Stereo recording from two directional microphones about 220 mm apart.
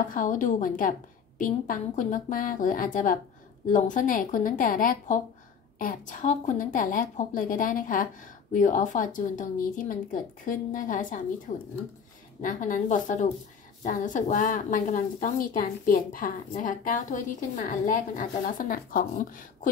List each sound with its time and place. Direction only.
0.0 s a woman's voice: 35° left (ahead or behind)